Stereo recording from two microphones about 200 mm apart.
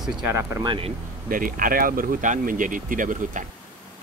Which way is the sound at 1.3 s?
45° right (ahead or behind).